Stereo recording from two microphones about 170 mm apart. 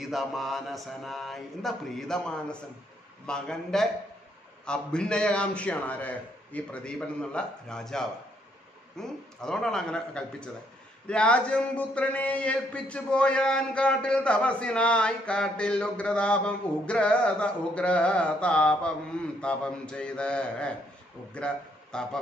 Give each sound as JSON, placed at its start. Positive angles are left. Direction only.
{"t": 0.0, "sound": "a man's voice", "side_deg": 0}
{"t": 21.9, "sound": "a man's voice", "side_deg": 5}